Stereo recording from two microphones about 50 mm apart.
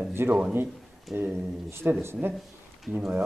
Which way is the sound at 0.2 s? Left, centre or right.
Right.